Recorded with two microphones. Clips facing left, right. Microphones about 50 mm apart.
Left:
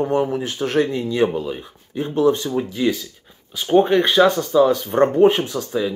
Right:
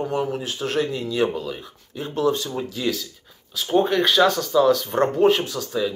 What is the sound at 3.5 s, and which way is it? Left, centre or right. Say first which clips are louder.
Speech: left 5 dB; left.